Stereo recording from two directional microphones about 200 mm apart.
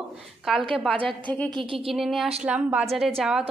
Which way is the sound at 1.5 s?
25° right (ahead or behind).